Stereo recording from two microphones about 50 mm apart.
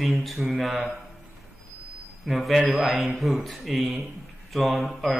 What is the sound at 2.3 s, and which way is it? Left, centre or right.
Speech, centre.